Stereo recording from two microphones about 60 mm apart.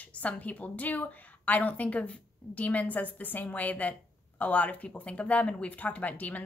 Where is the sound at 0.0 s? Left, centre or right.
Left.